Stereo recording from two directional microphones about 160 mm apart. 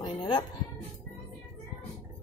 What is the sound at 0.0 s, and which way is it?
Music, 30° left (ahead or behind).